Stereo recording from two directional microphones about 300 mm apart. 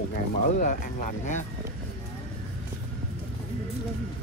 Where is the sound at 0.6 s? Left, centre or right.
Left.